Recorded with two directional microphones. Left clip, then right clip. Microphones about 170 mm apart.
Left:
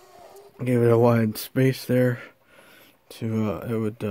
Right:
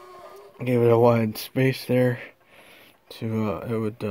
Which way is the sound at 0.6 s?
30° left (ahead or behind).